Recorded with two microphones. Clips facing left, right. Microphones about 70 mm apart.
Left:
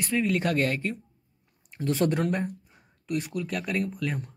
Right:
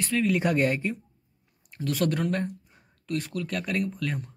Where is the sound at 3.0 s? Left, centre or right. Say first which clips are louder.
Left 1 dB; centre.